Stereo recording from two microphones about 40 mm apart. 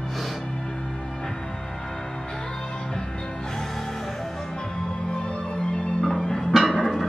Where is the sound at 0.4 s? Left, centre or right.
Centre.